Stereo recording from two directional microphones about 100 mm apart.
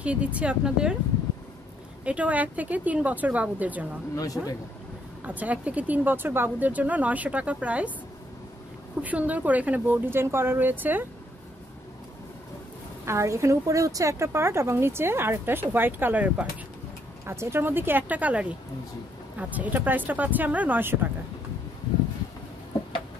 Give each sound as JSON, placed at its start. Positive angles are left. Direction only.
{"t": 0.0, "sound": "speech", "side_deg": -10}
{"t": 2.0, "sound": "speech", "side_deg": -15}
{"t": 5.2, "sound": "speech", "side_deg": -15}
{"t": 9.0, "sound": "speech", "side_deg": -15}
{"t": 13.0, "sound": "speech", "side_deg": -30}